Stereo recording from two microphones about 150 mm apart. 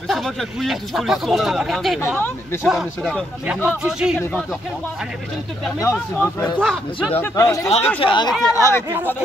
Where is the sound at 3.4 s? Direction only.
10° right (ahead or behind).